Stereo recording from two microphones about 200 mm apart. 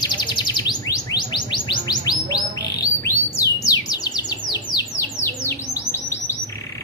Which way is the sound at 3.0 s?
15° left (ahead or behind).